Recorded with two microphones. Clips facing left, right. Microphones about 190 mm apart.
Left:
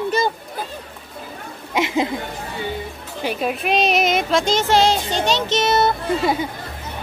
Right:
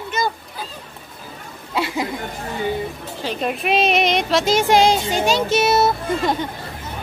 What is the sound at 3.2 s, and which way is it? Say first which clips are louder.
Speech: even; 5° left (ahead or behind).